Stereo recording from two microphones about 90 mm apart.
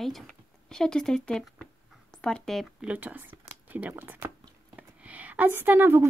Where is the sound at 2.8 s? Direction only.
15° right (ahead or behind).